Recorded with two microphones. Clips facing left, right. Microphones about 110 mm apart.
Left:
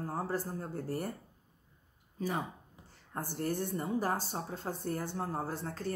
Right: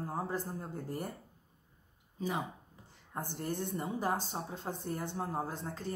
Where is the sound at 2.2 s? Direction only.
15° right (ahead or behind).